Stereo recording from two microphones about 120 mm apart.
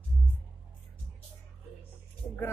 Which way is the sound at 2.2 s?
5° left (ahead or behind).